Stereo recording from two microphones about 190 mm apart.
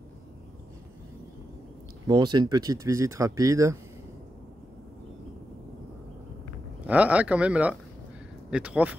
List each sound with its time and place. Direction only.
2.0 s speech: 20° right (ahead or behind)
6.9 s speech: 5° right (ahead or behind)